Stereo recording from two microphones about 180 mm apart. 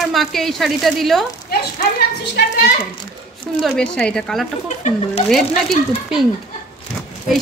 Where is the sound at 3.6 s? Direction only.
5° left (ahead or behind).